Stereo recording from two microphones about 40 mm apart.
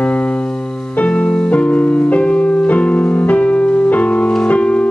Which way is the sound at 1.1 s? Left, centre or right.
Left.